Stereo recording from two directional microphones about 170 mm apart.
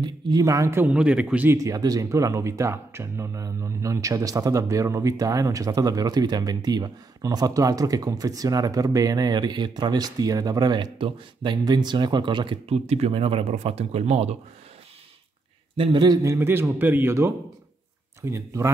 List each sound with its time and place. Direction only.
0.0 s speech: 20° right (ahead or behind); by 14.3 s 40° right (ahead or behind)
15.7 s a man's voice: 30° right (ahead or behind)